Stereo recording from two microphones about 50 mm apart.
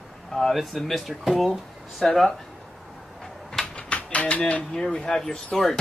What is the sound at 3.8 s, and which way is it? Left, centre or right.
Typewriter, left.